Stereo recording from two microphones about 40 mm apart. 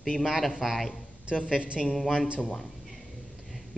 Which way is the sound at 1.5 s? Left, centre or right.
Right.